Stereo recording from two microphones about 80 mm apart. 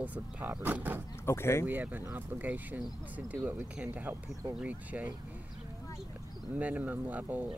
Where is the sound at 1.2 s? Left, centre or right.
Left.